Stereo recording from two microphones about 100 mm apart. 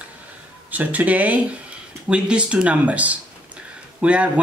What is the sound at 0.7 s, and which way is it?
Speech, 15° right (ahead or behind).